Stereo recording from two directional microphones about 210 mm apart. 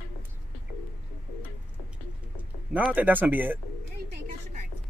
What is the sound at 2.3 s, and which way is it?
Speech, 5° right (ahead or behind).